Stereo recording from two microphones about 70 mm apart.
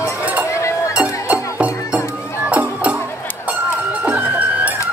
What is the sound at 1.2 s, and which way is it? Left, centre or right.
Music, right.